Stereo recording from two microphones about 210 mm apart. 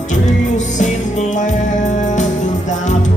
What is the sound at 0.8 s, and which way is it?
Music, 35° left (ahead or behind).